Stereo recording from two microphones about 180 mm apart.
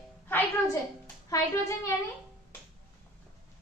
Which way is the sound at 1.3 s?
20° left (ahead or behind).